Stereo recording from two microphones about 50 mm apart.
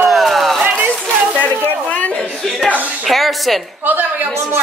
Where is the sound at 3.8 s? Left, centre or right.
Right.